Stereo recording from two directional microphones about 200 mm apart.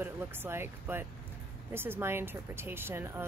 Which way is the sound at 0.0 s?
10° right (ahead or behind).